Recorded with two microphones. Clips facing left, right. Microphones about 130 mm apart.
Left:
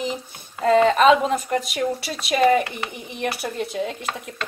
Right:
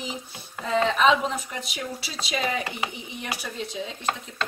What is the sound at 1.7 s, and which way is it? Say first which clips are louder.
A woman's voice: left 9 dB; 60° left (ahead or behind).